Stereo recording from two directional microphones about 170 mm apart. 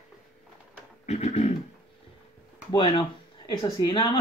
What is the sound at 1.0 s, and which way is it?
Speech, 40° left (ahead or behind).